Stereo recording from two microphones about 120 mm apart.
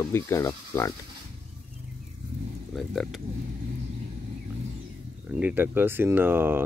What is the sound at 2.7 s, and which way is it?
Speech, centre (ahead or behind).